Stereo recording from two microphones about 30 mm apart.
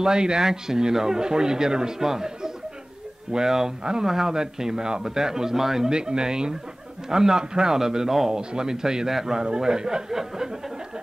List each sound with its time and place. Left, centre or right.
0.0 s a man's voice: right
5.9 s a man's voice: right